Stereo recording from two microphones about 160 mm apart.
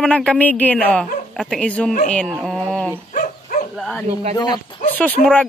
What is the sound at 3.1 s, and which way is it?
Dog, 55° left (ahead or behind).